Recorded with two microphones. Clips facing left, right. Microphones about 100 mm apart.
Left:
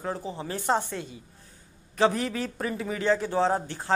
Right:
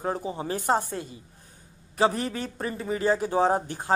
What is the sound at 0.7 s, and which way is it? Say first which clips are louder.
Speech: right 1 dB; 45° right (ahead or behind).